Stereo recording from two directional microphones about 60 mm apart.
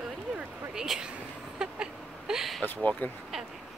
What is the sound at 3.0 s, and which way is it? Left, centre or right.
Speech, left.